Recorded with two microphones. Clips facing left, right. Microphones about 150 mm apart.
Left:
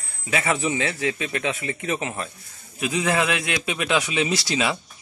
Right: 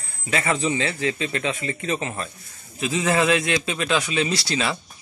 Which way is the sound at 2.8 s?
Centre (ahead or behind).